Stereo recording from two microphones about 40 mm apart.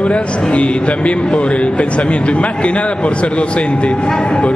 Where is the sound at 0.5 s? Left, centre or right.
Left.